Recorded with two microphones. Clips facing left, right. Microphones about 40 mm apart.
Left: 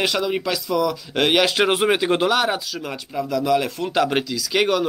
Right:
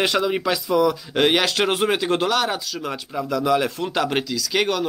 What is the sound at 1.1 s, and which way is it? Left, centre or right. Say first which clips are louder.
Speech: left 1 dB; centre.